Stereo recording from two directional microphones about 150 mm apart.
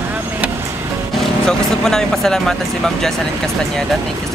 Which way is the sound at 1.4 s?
5° left (ahead or behind).